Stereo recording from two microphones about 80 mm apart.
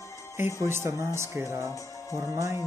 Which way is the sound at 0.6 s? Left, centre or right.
Right.